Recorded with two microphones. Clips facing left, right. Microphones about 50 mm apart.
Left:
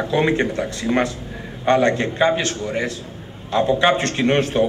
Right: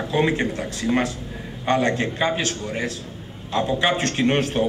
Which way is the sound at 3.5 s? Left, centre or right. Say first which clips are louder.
Left 4 dB; centre.